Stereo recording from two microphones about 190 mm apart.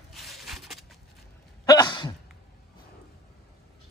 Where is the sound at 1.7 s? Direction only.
20° left (ahead or behind).